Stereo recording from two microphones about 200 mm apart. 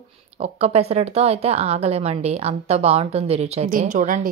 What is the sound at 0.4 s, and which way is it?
A woman's voice, 30° right (ahead or behind).